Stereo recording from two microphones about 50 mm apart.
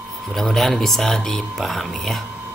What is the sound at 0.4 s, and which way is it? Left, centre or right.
Speech, centre.